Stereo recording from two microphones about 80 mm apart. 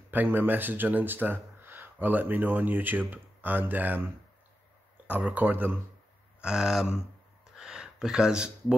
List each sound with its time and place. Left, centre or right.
0.1 s speech: right
6.4 s speech: centre
7.5 s gasp: centre